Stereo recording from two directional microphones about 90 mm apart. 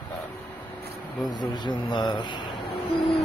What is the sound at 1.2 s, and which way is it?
Speech, 55° left (ahead or behind).